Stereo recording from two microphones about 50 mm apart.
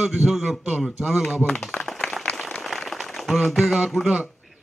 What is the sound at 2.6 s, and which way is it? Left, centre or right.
Applause, centre.